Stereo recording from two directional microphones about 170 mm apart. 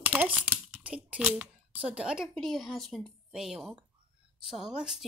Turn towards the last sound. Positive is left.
turn(degrees=-5)  # may be behind; listen again after turning